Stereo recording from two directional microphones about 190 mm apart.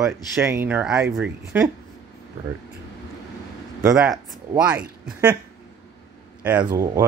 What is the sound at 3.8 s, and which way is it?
Speech, 5° right (ahead or behind).